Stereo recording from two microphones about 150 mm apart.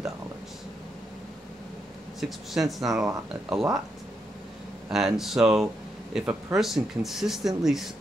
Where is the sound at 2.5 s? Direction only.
Centre (ahead or behind).